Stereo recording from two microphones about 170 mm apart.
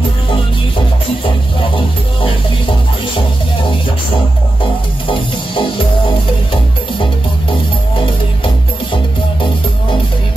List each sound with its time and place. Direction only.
5.0 s music: 30° left (ahead or behind)